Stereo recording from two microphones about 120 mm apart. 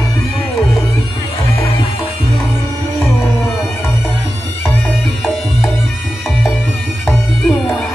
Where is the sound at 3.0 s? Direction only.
20° left (ahead or behind).